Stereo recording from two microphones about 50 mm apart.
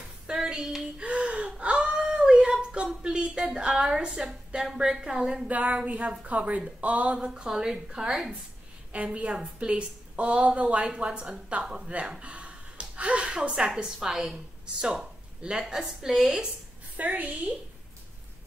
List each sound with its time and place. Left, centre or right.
0.3 s a sound: centre
0.9 s gasp: right
1.9 s a sound: centre
3.8 s a woman's voice: centre
5.5 s a woman's voice: right
7.4 s a woman's voice: centre
8.9 s a woman's voice: right; by 16.4 s centre
16.9 s a woman's voice: right